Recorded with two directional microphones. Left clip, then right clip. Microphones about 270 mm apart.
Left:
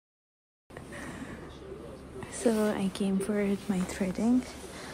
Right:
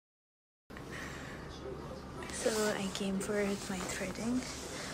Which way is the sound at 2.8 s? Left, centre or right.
Centre.